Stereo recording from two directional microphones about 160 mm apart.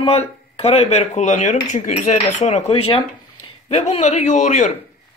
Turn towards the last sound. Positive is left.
turn(degrees=50)  # may be behind; listen again after turning